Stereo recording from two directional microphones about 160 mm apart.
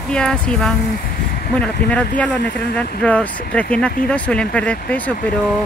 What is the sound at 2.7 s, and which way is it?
Speech, 10° left (ahead or behind).